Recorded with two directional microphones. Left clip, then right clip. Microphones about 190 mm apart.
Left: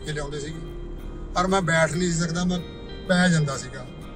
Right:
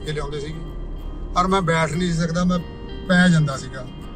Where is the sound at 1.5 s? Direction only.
15° left (ahead or behind).